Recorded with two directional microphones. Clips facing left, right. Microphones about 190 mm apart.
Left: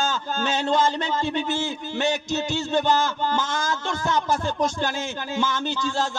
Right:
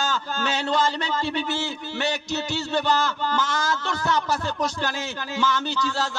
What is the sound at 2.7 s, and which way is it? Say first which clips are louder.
Speech: left 2 dB; 20° left (ahead or behind).